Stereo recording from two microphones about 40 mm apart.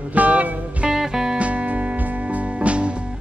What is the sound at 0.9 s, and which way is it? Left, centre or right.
Music, centre.